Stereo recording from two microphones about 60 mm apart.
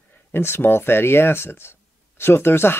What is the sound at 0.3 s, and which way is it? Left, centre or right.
Speech, left.